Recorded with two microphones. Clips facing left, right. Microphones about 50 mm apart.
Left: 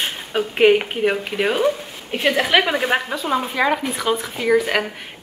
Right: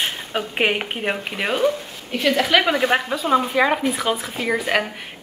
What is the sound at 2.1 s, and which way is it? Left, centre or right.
Speech, centre.